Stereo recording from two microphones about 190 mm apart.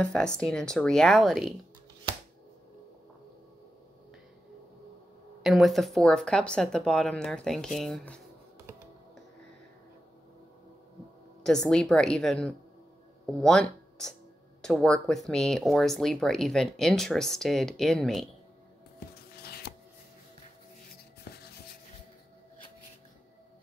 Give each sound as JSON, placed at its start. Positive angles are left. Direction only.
{"t": 0.0, "sound": "speech", "side_deg": 5}
{"t": 5.4, "sound": "speech", "side_deg": 0}
{"t": 11.7, "sound": "speech", "side_deg": 5}
{"t": 19.3, "sound": "a sound", "side_deg": 55}